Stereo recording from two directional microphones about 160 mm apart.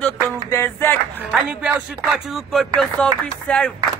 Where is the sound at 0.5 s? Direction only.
15° left (ahead or behind).